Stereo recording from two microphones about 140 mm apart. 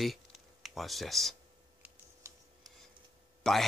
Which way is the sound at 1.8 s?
20° right (ahead or behind).